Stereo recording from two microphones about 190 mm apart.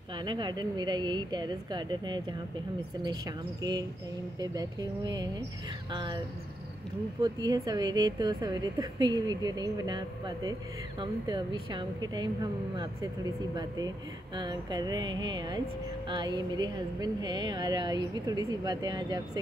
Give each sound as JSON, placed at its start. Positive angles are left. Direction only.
{"t": 0.2, "sound": "speech", "side_deg": -25}
{"t": 4.4, "sound": "speech", "side_deg": -20}